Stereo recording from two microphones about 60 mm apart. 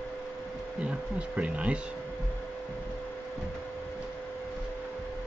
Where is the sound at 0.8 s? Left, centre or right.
Right.